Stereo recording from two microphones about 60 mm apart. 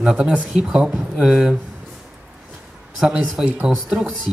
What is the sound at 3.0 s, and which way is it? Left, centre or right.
Speech, centre.